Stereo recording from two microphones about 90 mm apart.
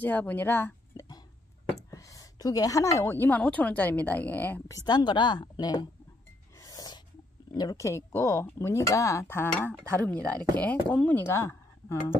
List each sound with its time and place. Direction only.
0.0 s a woman's voice: 20° left (ahead or behind)
1.8 s a sound: 35° left (ahead or behind)
3.1 s a woman's voice: 20° left (ahead or behind)
4.8 s a woman's voice: 55° left (ahead or behind)
6.6 s snort: 45° left (ahead or behind)
7.7 s speech: 35° left (ahead or behind); by 11.2 s 20° left (ahead or behind)
11.2 s a sound: 30° left (ahead or behind)